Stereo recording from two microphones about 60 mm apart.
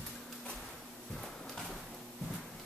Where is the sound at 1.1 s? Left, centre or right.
Centre.